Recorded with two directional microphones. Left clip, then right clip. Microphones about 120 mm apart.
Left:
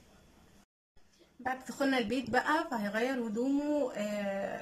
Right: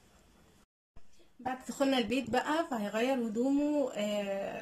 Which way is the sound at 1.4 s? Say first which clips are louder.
Even; 20° right (ahead or behind).